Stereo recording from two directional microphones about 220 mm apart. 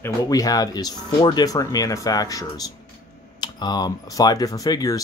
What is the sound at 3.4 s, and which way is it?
Speech, 20° left (ahead or behind).